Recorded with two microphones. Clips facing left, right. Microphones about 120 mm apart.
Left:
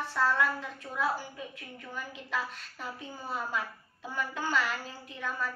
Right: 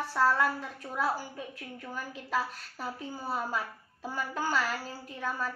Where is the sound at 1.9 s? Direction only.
40° right (ahead or behind).